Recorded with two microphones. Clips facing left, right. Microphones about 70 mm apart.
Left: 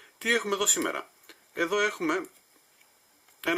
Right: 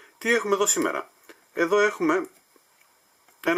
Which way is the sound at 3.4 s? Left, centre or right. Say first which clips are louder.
Right 5 dB; centre.